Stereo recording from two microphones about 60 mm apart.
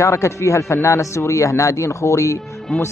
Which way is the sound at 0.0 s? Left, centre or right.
Left.